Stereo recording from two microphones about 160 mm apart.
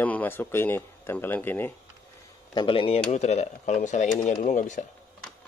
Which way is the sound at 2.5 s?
30° left (ahead or behind).